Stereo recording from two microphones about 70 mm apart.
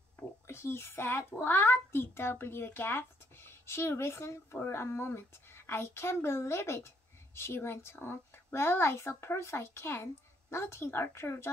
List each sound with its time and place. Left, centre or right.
0.5 s a child's voice: left